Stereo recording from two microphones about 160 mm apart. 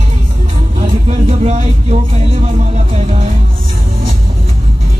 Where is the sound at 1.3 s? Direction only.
45° right (ahead or behind).